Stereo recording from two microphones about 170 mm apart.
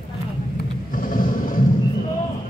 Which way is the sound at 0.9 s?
55° left (ahead or behind).